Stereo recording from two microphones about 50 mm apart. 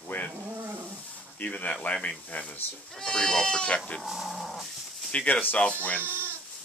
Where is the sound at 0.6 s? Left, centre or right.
Right.